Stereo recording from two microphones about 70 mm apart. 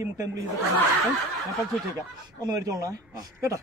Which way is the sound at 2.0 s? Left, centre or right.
Right.